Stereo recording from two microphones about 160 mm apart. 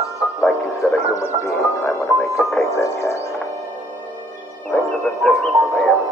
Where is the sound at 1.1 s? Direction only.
20° left (ahead or behind).